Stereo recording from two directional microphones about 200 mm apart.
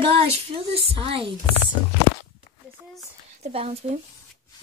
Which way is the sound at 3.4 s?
30° right (ahead or behind).